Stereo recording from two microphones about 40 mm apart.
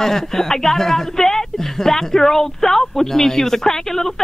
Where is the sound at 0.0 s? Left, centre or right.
Centre.